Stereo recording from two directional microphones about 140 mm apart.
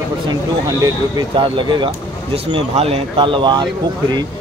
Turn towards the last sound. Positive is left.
turn(degrees=-35)  # may be behind; listen again after turning